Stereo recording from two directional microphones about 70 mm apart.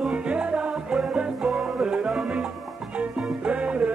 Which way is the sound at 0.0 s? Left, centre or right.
Centre.